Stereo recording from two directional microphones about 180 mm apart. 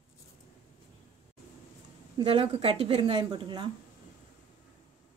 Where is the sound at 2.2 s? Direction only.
35° right (ahead or behind).